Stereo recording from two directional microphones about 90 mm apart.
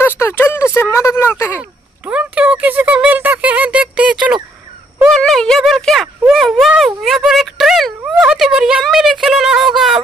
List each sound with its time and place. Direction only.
0.0 s speech: 25° left (ahead or behind)
2.0 s speech: 15° right (ahead or behind)
5.1 s speech: 5° left (ahead or behind)